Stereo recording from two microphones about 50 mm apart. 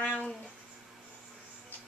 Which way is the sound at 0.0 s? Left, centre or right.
Left.